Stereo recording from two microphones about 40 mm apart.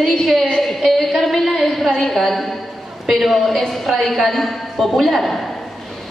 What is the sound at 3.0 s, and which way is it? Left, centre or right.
A woman's voice, centre.